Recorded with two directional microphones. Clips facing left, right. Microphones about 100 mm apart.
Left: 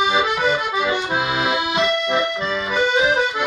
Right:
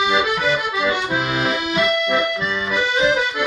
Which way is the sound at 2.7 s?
20° left (ahead or behind).